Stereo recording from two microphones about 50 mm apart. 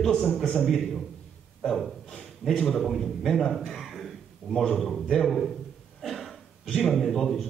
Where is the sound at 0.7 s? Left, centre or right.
Centre.